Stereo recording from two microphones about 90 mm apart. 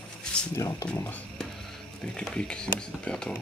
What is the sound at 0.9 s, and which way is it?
Speech, 25° left (ahead or behind).